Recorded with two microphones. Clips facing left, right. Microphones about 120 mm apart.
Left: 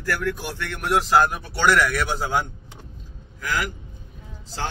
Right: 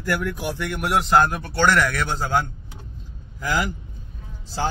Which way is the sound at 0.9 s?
Centre (ahead or behind).